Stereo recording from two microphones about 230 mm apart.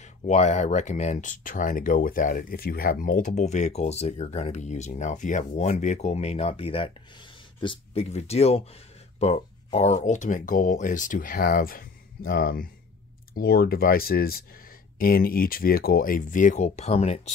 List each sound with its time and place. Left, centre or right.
0.0 s speech: left